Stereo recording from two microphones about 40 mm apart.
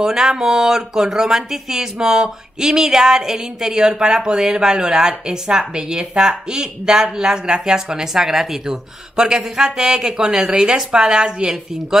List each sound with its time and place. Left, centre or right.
0.0 s speech: centre